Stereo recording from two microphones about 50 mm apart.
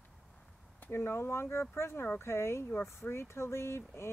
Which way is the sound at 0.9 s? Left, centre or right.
Left.